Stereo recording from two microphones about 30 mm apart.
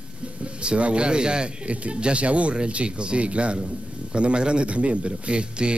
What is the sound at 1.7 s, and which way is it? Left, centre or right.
A man's voice, right.